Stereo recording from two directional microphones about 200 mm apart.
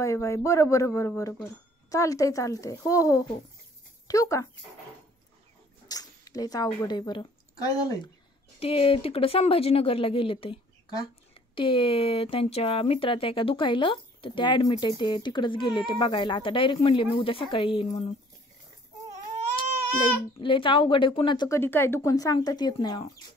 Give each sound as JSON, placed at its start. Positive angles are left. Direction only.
{"t": 0.0, "sound": "a woman's voice", "side_deg": 15}
{"t": 5.9, "sound": "speech", "side_deg": 20}
{"t": 8.5, "sound": "speech", "side_deg": 30}
{"t": 20.3, "sound": "speech", "side_deg": 25}
{"t": 21.5, "sound": "a woman's voice", "side_deg": 10}